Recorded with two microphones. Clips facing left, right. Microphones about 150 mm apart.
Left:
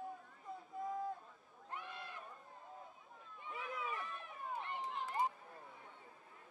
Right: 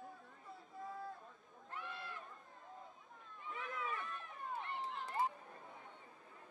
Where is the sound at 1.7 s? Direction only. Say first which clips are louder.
Even; 15° left (ahead or behind).